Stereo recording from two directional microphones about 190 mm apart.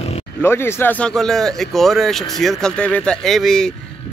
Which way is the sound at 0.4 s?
10° left (ahead or behind).